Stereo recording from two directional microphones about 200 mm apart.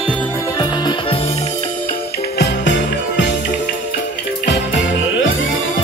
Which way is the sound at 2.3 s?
60° left (ahead or behind).